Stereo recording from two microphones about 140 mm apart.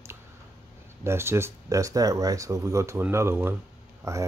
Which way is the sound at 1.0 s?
20° right (ahead or behind).